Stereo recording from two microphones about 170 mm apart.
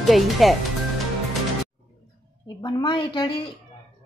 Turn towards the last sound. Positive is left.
turn(degrees=30)  # may be behind; listen again after turning